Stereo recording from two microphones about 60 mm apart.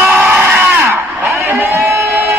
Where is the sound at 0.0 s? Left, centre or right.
Right.